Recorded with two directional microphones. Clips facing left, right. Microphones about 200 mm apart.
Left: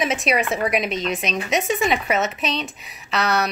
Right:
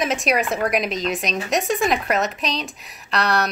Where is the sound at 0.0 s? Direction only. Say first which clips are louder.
Even; centre (ahead or behind).